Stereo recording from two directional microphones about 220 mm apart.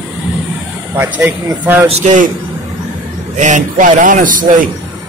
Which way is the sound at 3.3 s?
35° right (ahead or behind).